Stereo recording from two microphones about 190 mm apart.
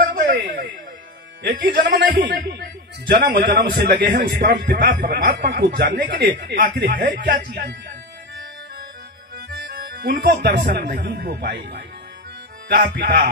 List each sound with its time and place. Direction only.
0.0 s a sound: 55° right (ahead or behind)
1.8 s a man's voice: 55° right (ahead or behind)
9.7 s a man's voice: 50° right (ahead or behind)